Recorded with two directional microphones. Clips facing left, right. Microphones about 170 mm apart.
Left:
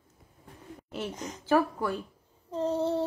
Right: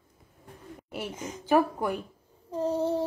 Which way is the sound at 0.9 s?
10° right (ahead or behind).